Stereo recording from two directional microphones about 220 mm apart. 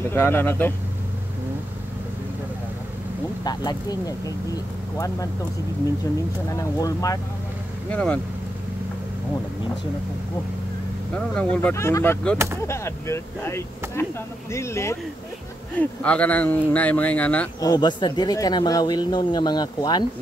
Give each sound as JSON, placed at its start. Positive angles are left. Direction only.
{"t": 0.0, "sound": "speech", "side_deg": 10}
{"t": 3.4, "sound": "speech", "side_deg": 15}
{"t": 6.5, "sound": "speech", "side_deg": 15}
{"t": 11.1, "sound": "speech", "side_deg": 5}
{"t": 17.6, "sound": "speech", "side_deg": 20}